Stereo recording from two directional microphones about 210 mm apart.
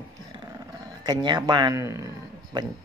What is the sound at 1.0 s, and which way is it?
Speech, 20° right (ahead or behind).